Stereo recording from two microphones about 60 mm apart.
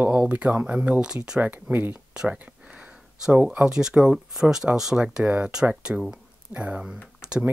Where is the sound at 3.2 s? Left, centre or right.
Centre.